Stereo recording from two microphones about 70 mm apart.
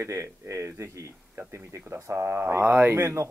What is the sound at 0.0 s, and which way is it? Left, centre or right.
Speech, right.